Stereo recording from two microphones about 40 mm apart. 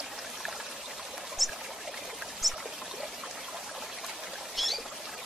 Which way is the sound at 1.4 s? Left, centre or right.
Centre.